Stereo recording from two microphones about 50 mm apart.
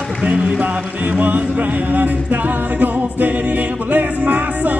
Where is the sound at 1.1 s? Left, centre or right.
Right.